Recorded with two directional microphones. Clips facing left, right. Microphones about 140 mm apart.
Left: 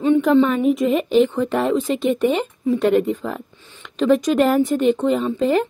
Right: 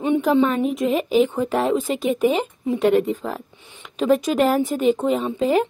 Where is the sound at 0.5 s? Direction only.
Centre (ahead or behind).